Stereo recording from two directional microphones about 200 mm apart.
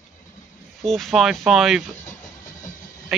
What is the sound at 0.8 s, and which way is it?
Speech, centre (ahead or behind).